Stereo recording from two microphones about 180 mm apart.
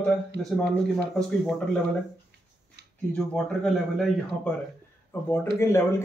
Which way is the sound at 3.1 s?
5° left (ahead or behind).